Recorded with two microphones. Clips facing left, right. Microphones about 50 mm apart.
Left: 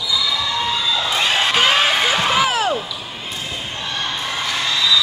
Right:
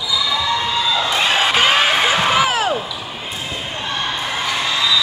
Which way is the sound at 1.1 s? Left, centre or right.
Centre.